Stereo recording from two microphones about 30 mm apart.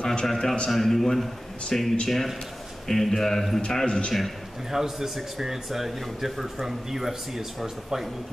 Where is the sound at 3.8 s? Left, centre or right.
Left.